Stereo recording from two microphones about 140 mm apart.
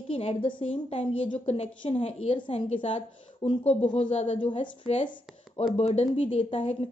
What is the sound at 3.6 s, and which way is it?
Speech, 50° left (ahead or behind).